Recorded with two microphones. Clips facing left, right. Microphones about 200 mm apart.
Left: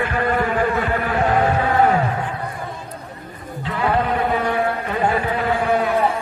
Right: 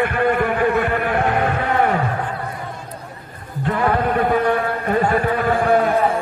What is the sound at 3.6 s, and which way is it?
Sheep, 50° right (ahead or behind).